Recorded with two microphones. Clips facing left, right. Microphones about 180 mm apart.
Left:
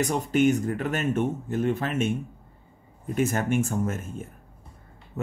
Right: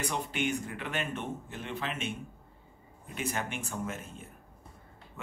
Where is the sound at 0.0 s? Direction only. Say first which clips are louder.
Left 11 dB; 45° left (ahead or behind).